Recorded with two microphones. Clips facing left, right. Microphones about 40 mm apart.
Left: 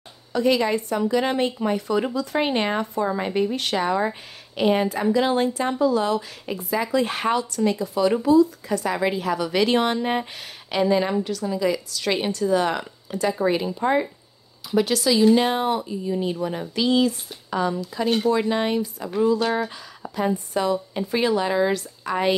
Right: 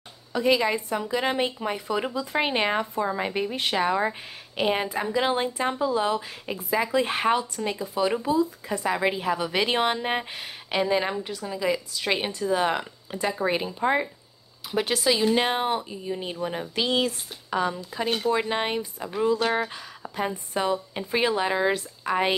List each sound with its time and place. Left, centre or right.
0.3 s speech: centre
14.7 s speech: right
16.7 s speech: right
18.0 s speech: centre
18.3 s speech: right
20.7 s speech: centre